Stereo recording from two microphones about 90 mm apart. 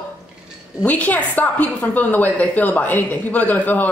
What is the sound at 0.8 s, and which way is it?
A woman's voice, 15° left (ahead or behind).